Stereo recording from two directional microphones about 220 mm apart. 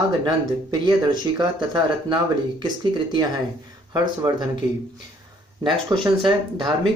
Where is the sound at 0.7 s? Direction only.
20° right (ahead or behind).